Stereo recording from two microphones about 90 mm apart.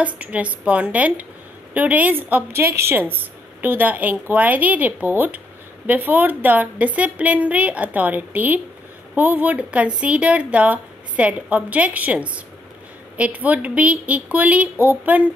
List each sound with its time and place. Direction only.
0.0 s a woman's voice: 15° right (ahead or behind)